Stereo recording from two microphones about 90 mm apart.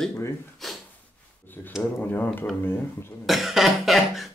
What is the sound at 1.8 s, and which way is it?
Speech, 20° left (ahead or behind).